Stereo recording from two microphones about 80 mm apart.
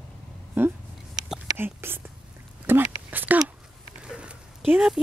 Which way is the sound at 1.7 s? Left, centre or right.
Right.